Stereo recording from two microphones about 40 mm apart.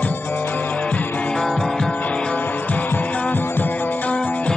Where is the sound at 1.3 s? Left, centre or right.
Centre.